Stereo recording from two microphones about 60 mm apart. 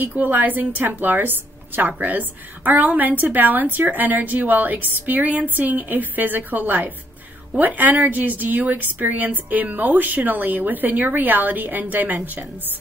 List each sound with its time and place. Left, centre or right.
0.0 s a woman's voice: right